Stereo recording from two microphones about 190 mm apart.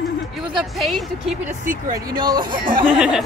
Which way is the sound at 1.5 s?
45° right (ahead or behind).